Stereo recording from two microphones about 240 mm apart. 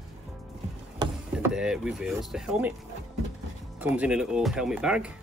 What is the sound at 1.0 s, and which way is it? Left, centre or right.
Rowboat, centre.